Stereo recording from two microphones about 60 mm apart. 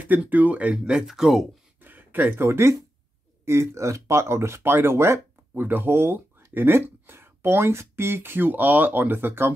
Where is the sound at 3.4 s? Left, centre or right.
Right.